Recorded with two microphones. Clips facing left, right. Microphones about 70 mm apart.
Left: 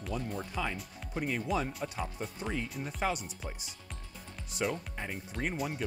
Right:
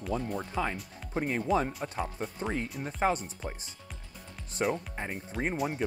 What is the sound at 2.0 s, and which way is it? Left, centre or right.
Speech, centre.